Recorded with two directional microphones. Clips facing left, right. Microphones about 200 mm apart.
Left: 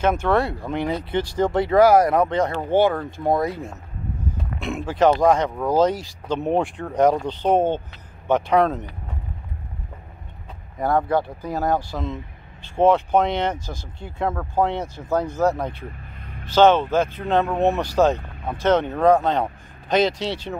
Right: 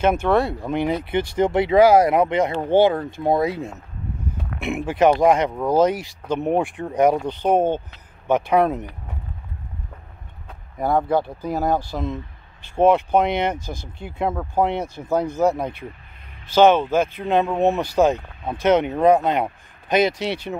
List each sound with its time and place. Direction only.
0.0 s speech: 10° right (ahead or behind)
10.8 s speech: 10° right (ahead or behind)